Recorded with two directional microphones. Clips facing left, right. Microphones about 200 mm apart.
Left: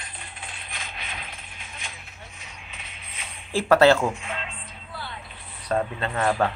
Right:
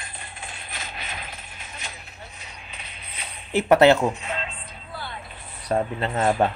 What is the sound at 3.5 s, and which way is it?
Speech, 20° right (ahead or behind).